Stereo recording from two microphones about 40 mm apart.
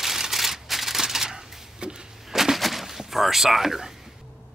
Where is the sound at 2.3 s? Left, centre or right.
Centre.